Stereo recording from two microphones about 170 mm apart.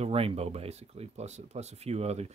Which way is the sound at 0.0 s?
35° right (ahead or behind).